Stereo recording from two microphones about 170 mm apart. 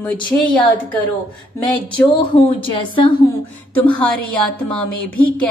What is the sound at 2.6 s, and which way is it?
Speech, 30° left (ahead or behind).